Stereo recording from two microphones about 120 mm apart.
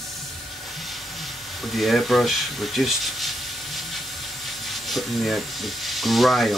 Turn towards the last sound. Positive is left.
turn(degrees=0)  # may be behind; listen again after turning